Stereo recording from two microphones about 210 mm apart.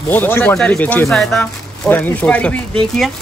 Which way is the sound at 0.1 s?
10° left (ahead or behind).